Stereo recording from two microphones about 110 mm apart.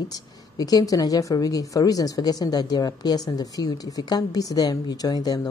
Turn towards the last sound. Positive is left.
turn(degrees=35)  # may be behind; listen again after turning